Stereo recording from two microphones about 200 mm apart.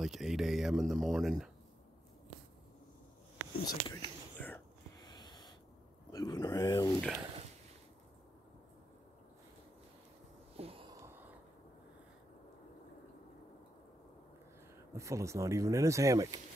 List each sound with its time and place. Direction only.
0.0 s speech: centre (ahead or behind)
3.6 s speech: 20° left (ahead or behind)
4.4 s whispering: 10° left (ahead or behind)
5.0 s wheeze: 20° left (ahead or behind)
6.1 s speech: 20° left (ahead or behind)
7.0 s speech: centre (ahead or behind)
10.6 s a sound: 25° right (ahead or behind)
11.0 s a sound: 10° right (ahead or behind)
15.0 s speech: 15° right (ahead or behind)